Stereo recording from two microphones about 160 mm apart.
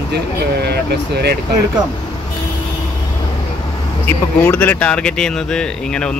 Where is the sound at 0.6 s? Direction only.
90° right.